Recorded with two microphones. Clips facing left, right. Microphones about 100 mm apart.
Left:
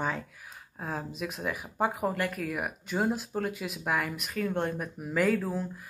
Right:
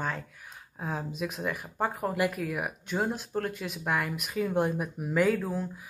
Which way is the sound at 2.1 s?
5° right (ahead or behind).